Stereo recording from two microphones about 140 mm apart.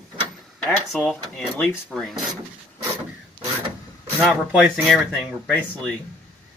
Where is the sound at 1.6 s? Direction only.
Centre (ahead or behind).